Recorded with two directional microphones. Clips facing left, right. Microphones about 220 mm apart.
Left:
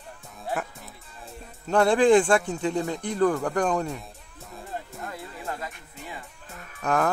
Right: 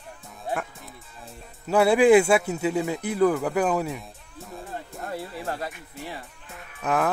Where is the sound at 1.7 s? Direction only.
5° right (ahead or behind).